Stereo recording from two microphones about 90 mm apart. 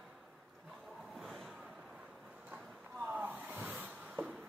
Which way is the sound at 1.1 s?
Centre (ahead or behind).